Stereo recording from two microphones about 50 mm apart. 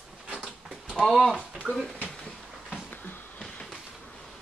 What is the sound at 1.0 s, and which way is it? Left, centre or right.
Speech, centre.